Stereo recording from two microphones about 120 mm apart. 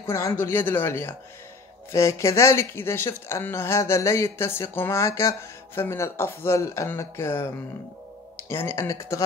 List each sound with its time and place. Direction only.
0.0 s speech: 20° left (ahead or behind)